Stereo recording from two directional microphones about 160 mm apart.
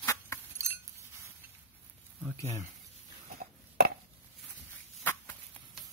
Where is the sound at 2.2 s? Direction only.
15° left (ahead or behind).